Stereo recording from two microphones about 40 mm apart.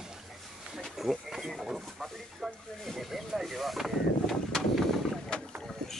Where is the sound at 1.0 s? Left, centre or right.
Centre.